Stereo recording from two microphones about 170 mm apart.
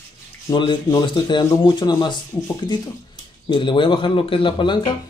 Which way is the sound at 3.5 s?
30° left (ahead or behind).